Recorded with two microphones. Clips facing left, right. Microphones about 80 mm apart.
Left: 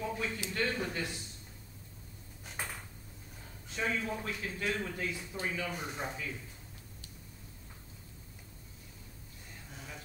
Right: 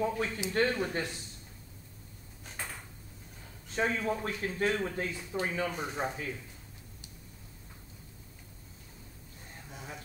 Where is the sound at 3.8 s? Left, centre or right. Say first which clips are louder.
Right 4 dB; right.